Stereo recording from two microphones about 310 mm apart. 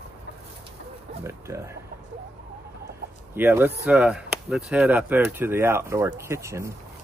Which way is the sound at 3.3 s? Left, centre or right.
Centre.